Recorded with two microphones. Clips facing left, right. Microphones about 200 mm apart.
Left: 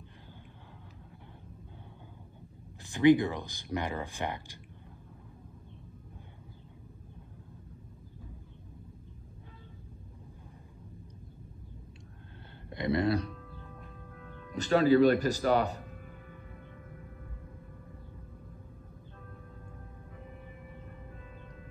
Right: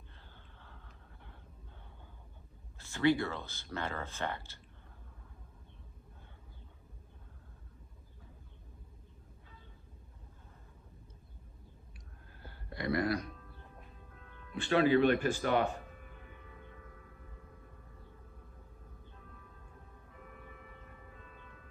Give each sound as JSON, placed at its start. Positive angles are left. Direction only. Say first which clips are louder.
{"t": 2.8, "sound": "speech", "louder": "left 7 dB", "side_deg": 15}
{"t": 12.4, "sound": "music", "louder": "left 4 dB", "side_deg": 20}
{"t": 14.5, "sound": "speech", "louder": "left 4 dB", "side_deg": 40}